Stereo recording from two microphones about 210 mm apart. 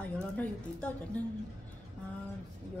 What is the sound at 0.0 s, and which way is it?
A woman's voice, 5° left (ahead or behind).